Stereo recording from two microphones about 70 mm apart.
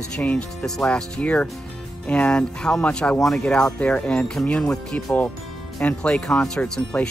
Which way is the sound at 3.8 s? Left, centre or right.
Centre.